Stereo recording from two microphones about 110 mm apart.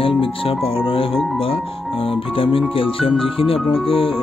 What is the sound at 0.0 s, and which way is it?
Speech, 55° left (ahead or behind).